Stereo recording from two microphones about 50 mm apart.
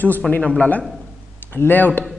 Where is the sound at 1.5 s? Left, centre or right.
Left.